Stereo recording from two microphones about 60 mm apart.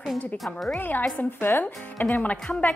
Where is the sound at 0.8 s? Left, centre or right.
Left.